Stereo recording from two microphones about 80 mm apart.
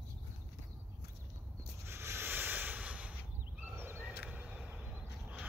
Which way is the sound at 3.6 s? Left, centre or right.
Right.